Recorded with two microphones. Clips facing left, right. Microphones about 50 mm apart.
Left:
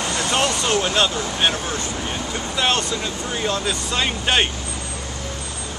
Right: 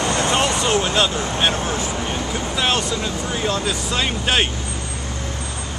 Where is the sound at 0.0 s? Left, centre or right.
Right.